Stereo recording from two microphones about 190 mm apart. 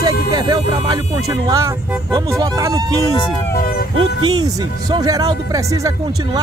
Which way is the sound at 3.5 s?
50° left (ahead or behind).